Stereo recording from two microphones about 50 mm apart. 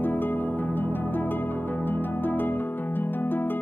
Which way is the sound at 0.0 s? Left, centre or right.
Left.